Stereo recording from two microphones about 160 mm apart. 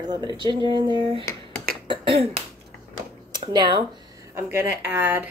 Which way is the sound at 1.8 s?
30° right (ahead or behind).